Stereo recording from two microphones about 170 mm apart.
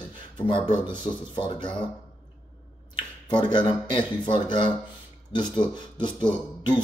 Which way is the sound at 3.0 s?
25° left (ahead or behind).